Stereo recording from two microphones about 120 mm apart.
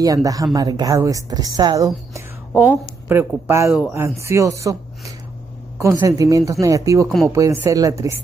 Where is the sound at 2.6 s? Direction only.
15° right (ahead or behind).